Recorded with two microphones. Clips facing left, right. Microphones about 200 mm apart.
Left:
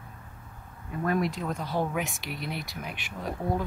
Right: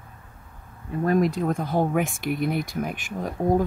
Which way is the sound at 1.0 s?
40° right (ahead or behind).